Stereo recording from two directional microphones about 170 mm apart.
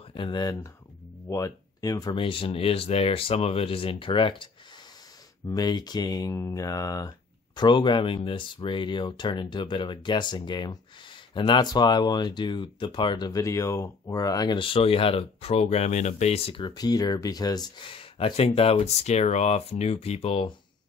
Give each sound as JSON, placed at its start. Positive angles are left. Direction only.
{"t": 0.1, "sound": "speech", "side_deg": 25}
{"t": 5.5, "sound": "speech", "side_deg": 20}